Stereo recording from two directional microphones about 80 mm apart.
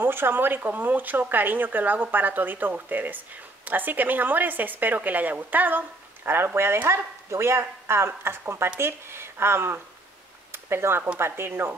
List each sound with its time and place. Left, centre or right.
0.0 s a woman's voice: right
10.5 s a sound: right
11.1 s a woman's voice: right